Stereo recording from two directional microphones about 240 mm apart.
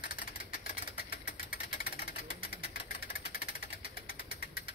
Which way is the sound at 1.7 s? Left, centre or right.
Left.